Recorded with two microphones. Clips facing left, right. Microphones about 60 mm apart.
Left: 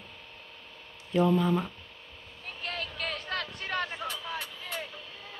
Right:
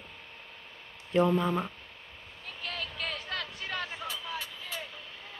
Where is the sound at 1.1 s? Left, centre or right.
Right.